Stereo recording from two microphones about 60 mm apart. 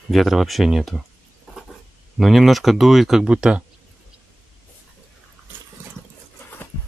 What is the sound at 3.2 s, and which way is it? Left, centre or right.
Speech, centre.